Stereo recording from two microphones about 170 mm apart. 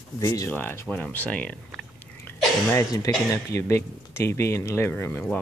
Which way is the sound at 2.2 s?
20° left (ahead or behind).